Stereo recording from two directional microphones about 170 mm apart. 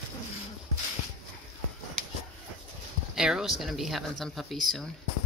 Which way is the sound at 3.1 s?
5° right (ahead or behind).